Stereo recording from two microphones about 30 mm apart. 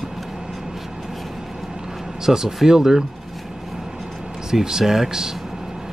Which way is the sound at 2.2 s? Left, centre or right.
Centre.